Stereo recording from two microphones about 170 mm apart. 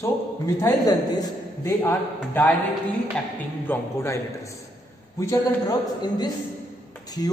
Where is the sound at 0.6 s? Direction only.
20° left (ahead or behind).